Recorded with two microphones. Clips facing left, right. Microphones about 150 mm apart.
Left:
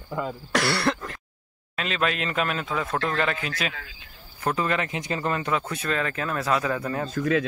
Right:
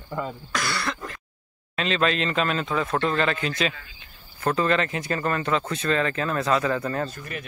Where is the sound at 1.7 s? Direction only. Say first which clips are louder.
Right 3 dB; 5° left (ahead or behind).